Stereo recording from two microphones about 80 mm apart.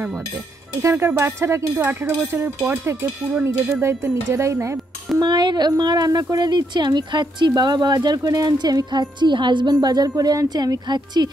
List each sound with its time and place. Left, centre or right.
0.8 s speech: right
5.2 s speech: right